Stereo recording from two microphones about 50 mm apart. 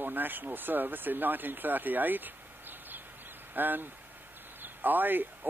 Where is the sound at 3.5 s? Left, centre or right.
Right.